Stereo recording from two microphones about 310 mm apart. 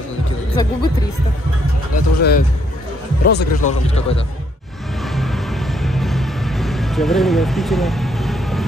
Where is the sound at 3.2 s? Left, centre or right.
Left.